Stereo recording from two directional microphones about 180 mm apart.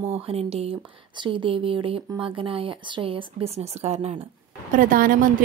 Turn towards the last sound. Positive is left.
turn(degrees=-50)  # may be behind; listen again after turning